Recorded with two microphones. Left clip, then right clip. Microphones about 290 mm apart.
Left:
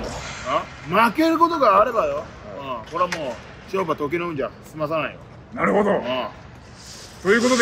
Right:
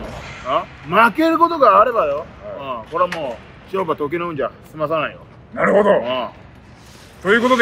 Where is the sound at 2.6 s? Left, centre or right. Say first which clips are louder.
Right 4 dB; centre.